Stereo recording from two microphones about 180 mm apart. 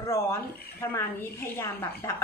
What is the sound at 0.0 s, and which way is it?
A woman's voice, 15° left (ahead or behind).